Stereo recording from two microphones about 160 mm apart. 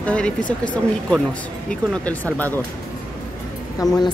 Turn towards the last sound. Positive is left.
turn(degrees=25)  # may be behind; listen again after turning